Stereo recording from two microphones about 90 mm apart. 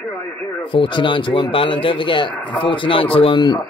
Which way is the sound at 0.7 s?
65° left (ahead or behind).